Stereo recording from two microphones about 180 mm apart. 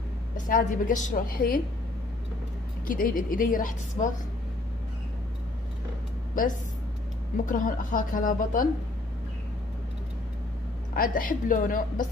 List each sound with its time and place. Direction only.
0.5 s a woman's voice: 50° left (ahead or behind)
2.9 s a woman's voice: 50° left (ahead or behind)
6.4 s a woman's voice: 50° left (ahead or behind)
11.0 s a woman's voice: 50° left (ahead or behind)